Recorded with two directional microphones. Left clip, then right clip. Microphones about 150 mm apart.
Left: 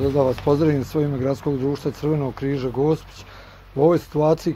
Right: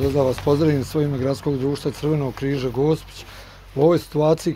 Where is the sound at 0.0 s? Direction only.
25° right (ahead or behind).